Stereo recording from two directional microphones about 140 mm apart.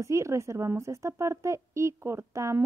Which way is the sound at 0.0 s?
20° right (ahead or behind).